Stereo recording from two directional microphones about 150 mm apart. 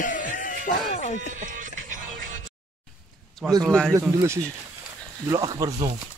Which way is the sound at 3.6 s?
5° left (ahead or behind).